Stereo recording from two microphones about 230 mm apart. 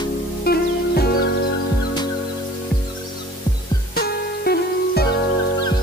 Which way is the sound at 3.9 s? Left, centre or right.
Left.